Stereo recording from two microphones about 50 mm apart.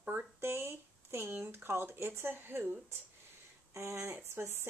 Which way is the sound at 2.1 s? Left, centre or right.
Right.